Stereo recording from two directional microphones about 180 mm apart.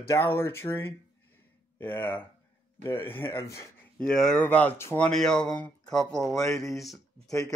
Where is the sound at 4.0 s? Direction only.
5° left (ahead or behind).